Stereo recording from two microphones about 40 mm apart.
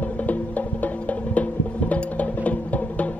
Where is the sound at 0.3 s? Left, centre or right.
Left.